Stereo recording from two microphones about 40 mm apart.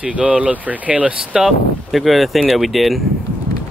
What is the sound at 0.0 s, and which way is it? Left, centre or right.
Speech, right.